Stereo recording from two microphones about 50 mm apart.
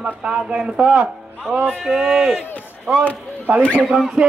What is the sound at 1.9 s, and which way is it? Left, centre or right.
Speech, centre.